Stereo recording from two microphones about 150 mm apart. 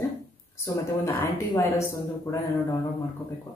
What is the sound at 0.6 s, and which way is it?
A woman's voice, 20° left (ahead or behind).